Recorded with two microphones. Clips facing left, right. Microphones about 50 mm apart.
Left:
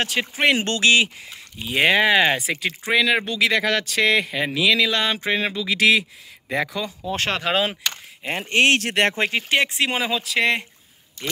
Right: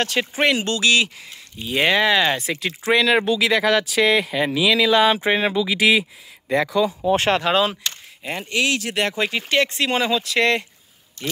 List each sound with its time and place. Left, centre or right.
0.0 s speech: centre
0.7 s speech: left
1.7 s speech: centre
6.5 s speech: centre
8.2 s speech: left
8.5 s speech: left
9.1 s speech: left
9.5 s speech: centre